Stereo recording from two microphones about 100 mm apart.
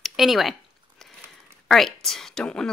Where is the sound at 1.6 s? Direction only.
5° left (ahead or behind).